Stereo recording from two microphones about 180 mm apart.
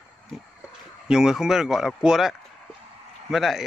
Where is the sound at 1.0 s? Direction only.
5° right (ahead or behind).